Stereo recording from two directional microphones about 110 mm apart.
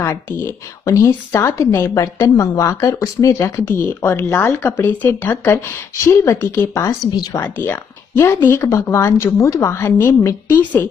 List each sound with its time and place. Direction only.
0.3 s a woman's voice: 25° left (ahead or behind)